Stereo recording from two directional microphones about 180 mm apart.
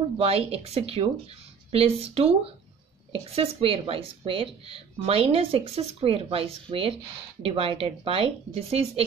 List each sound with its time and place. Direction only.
0.2 s speech: 35° right (ahead or behind)